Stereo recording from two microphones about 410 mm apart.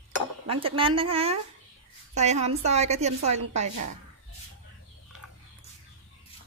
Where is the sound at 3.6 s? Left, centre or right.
Right.